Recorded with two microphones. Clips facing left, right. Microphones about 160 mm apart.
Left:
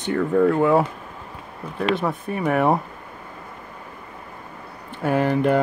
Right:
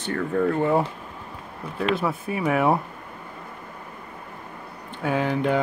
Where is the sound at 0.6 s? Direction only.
65° left (ahead or behind).